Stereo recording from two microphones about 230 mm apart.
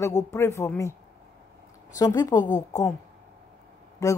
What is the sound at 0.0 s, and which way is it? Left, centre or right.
Speech, centre.